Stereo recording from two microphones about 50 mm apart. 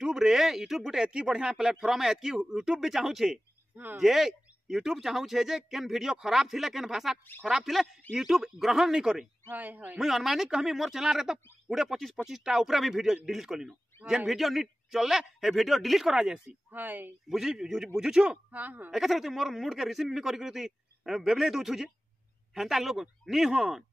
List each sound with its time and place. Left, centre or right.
0.0 s speech: centre
9.5 s a man's voice: right
9.9 s speech: centre
16.1 s speech: centre
16.7 s a man's voice: right
17.3 s speech: centre
18.5 s a man's voice: right
18.9 s speech: centre